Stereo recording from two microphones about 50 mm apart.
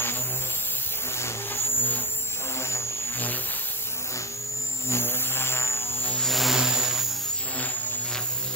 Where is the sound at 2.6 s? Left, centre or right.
Left.